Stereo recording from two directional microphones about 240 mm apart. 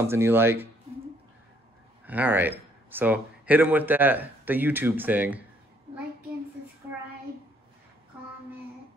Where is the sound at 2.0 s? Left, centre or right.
Centre.